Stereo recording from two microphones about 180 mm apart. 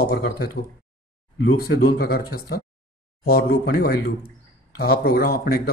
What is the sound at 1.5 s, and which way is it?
Speech, 55° left (ahead or behind).